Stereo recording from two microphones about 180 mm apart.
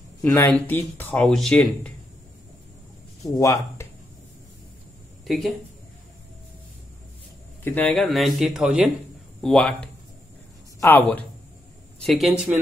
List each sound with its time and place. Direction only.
0.2 s speech: 10° left (ahead or behind)
3.2 s speech: 15° left (ahead or behind)
5.2 s speech: centre (ahead or behind)
7.6 s speech: 10° left (ahead or behind)